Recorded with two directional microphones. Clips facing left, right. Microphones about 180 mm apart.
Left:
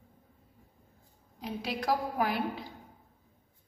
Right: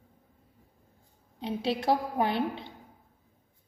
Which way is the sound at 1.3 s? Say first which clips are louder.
Right 5 dB; 30° right (ahead or behind).